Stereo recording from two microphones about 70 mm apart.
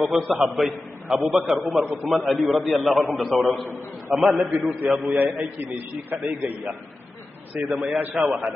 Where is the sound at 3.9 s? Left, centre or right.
Centre.